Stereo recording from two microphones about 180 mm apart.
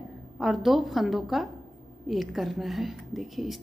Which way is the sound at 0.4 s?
Centre (ahead or behind).